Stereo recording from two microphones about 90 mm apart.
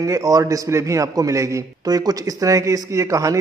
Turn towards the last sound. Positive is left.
turn(degrees=-35)  # may be behind; listen again after turning